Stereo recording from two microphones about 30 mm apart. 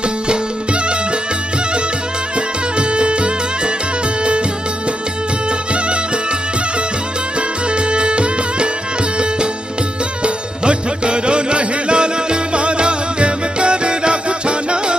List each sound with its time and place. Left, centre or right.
2.3 s music: right
7.3 s music: right
10.2 s music: right